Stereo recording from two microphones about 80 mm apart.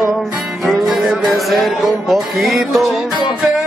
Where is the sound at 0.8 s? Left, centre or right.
Centre.